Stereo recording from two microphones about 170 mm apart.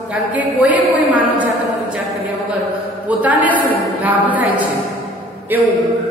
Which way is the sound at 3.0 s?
10° right (ahead or behind).